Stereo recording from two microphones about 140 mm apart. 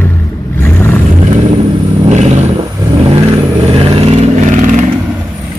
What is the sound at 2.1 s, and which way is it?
Vehicle, 55° right (ahead or behind).